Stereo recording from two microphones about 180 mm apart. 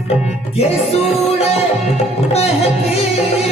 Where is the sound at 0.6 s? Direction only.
35° left (ahead or behind).